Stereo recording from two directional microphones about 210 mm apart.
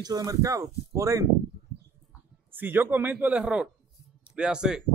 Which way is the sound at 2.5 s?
10° right (ahead or behind).